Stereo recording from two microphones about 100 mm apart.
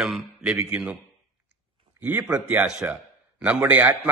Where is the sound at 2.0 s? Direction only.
15° right (ahead or behind).